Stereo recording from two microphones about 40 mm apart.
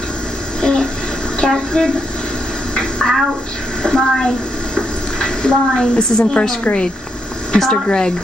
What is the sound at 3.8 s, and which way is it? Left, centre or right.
Speech, centre.